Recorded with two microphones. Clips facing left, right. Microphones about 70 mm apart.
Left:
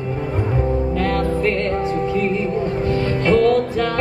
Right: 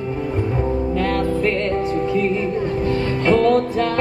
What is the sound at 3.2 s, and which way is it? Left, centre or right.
Music, right.